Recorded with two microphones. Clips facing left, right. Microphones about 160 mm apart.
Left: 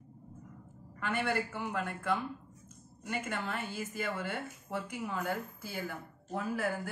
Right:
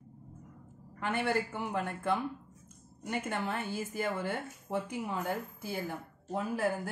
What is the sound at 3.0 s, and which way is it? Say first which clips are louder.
Speech: right 2 dB; 25° right (ahead or behind).